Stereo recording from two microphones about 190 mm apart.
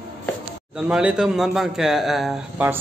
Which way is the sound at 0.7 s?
5° right (ahead or behind).